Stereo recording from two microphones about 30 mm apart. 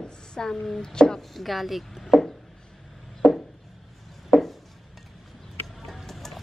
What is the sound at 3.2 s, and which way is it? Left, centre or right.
Chopping, right.